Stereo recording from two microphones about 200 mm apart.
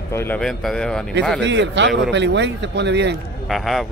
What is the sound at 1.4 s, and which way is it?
Speech, 60° right (ahead or behind).